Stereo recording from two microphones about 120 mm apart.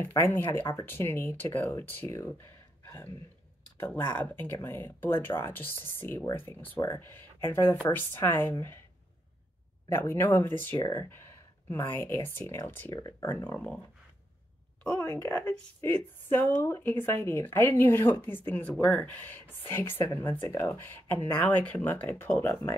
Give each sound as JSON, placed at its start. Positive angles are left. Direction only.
{"t": 0.0, "sound": "speech", "side_deg": 20}
{"t": 2.8, "sound": "a sound", "side_deg": 15}
{"t": 4.2, "sound": "speech", "side_deg": 15}
{"t": 9.8, "sound": "speech", "side_deg": 20}
{"t": 14.8, "sound": "speech", "side_deg": 10}